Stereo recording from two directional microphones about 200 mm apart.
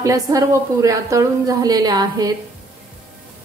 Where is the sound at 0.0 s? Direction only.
15° right (ahead or behind).